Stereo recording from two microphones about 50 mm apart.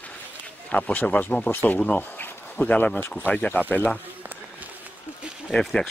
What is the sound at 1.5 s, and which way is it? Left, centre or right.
Speech, left.